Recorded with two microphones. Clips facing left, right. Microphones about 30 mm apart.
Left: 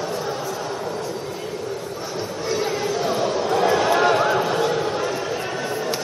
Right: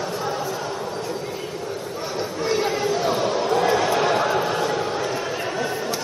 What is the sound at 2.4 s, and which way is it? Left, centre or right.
Chatter, centre.